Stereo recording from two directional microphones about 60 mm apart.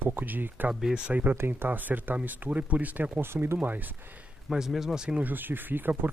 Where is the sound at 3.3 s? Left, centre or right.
Right.